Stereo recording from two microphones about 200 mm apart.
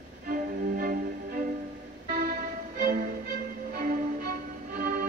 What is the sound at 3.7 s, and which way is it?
Music, 45° right (ahead or behind).